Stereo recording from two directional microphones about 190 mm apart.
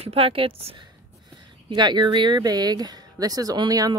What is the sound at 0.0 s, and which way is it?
A woman's voice, 30° right (ahead or behind).